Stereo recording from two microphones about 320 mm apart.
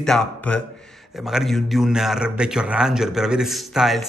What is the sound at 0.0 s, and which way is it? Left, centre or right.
A man's voice, centre.